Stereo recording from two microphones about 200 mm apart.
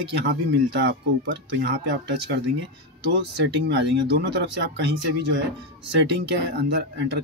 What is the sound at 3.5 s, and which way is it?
Speech, 60° right (ahead or behind).